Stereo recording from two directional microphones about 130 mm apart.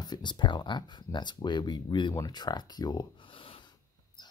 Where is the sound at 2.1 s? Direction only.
30° left (ahead or behind).